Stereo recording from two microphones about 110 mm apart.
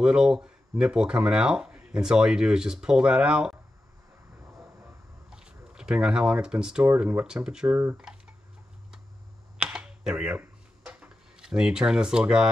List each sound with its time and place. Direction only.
0.0 s speech: 5° right (ahead or behind)
5.3 s speech: 5° right (ahead or behind)
7.7 s speech: 15° right (ahead or behind)
9.6 s a sound: 5° right (ahead or behind)